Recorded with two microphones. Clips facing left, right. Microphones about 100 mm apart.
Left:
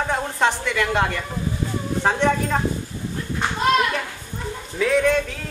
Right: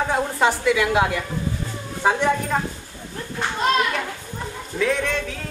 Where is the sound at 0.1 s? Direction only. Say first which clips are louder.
Even; 5° right (ahead or behind).